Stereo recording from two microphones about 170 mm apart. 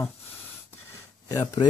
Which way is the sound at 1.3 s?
20° left (ahead or behind).